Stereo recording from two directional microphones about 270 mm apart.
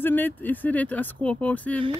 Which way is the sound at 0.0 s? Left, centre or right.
Centre.